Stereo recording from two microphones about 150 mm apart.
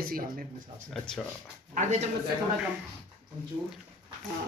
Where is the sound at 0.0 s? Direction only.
75° right (ahead or behind).